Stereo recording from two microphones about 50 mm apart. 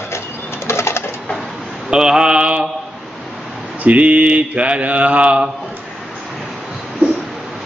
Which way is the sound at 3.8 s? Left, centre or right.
Right.